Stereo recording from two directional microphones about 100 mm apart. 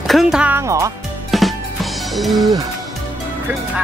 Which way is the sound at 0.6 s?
30° right (ahead or behind).